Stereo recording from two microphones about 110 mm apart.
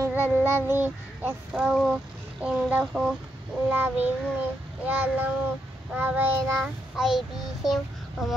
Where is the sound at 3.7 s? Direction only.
20° right (ahead or behind).